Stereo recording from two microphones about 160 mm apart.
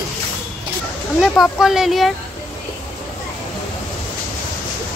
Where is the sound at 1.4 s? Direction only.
5° right (ahead or behind).